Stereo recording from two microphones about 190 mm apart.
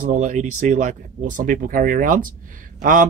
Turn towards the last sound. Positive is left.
turn(degrees=-45)  # may be behind; listen again after turning